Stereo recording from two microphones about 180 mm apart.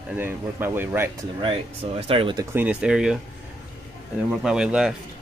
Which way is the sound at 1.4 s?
30° right (ahead or behind).